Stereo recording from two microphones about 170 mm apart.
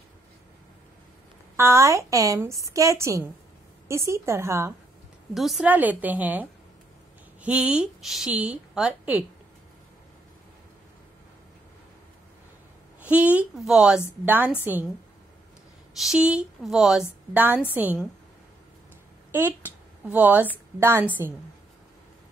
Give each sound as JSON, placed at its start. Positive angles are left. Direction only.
{"t": 1.6, "sound": "a woman's voice", "side_deg": -15}
{"t": 5.3, "sound": "a woman's voice", "side_deg": 0}
{"t": 7.4, "sound": "a woman's voice", "side_deg": -5}
{"t": 13.0, "sound": "a woman's voice", "side_deg": -10}
{"t": 16.0, "sound": "a woman's voice", "side_deg": -5}
{"t": 19.3, "sound": "a woman's voice", "side_deg": -10}